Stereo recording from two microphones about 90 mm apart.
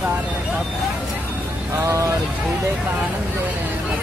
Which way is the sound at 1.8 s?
35° right (ahead or behind).